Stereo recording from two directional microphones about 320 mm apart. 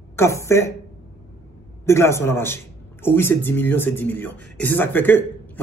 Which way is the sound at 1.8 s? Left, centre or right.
Centre.